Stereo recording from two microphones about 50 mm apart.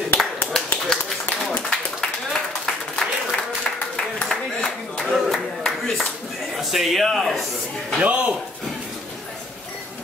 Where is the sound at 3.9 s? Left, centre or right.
Centre.